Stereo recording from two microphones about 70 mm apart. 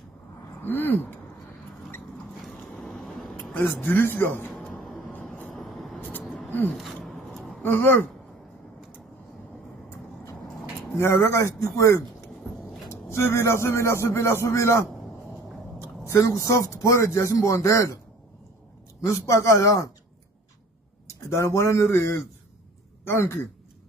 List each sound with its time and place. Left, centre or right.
0.6 s speech: left
2.4 s vehicle: centre
3.5 s speech: left
4.7 s vehicle: centre
7.1 s a sound: centre
7.6 s speech: left
11.0 s speech: left
19.0 s speech: left
21.1 s speech: left
23.0 s speech: left